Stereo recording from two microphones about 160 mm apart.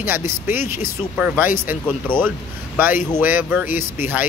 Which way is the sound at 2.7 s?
10° right (ahead or behind).